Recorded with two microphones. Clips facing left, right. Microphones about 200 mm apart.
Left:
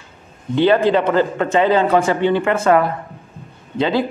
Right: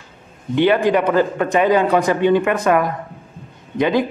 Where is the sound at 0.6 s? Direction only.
15° right (ahead or behind).